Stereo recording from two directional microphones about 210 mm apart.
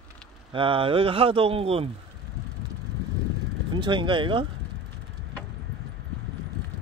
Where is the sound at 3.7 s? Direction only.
25° right (ahead or behind).